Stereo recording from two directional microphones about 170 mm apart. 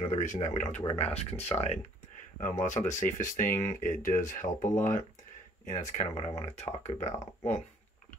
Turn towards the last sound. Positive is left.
turn(degrees=20)  # may be behind; listen again after turning